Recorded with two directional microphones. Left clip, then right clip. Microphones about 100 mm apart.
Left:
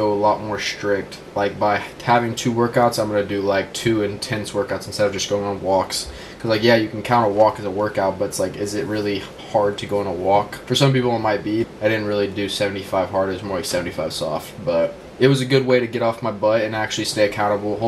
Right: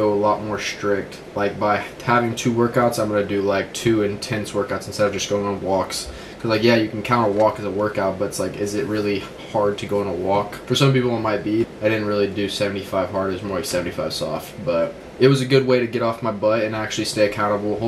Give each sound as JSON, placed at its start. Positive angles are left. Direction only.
{"t": 0.0, "sound": "speech", "side_deg": 15}